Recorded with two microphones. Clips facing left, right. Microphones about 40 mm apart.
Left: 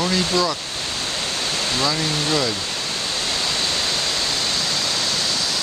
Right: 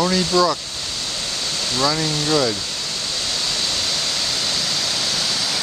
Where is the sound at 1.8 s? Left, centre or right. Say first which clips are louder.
Right 4 dB; centre.